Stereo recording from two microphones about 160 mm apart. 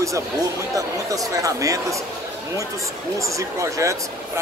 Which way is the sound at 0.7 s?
20° right (ahead or behind).